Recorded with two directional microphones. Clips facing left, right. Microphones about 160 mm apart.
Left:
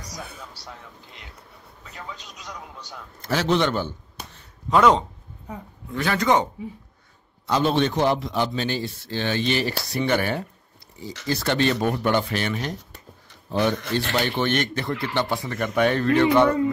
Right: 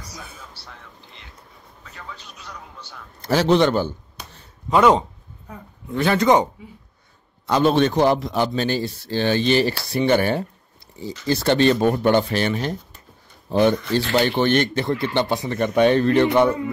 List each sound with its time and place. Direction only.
2.0 s a man's voice: 15° left (ahead or behind)
3.2 s a man's voice: 35° right (ahead or behind)
4.6 s speech: 10° right (ahead or behind)
5.9 s speech: 25° right (ahead or behind)
7.4 s a man's voice: 50° right (ahead or behind); by 12.7 s 35° right (ahead or behind)
12.7 s a sound: 80° left
13.5 s speech: 30° right (ahead or behind)